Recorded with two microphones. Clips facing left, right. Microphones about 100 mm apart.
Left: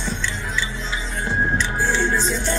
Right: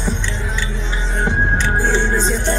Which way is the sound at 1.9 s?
20° right (ahead or behind).